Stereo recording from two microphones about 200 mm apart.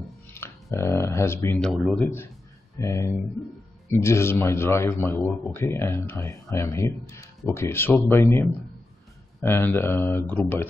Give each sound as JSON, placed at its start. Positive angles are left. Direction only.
{"t": 0.3, "sound": "speech", "side_deg": 15}